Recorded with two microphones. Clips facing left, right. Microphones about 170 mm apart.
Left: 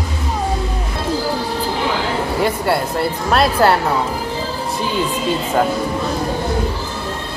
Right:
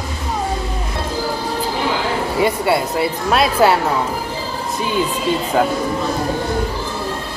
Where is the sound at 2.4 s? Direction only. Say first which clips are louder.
Right 2 dB; centre (ahead or behind).